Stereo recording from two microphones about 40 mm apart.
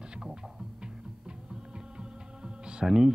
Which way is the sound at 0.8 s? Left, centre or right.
Right.